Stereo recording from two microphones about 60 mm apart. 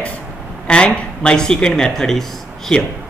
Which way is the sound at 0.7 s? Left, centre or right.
Centre.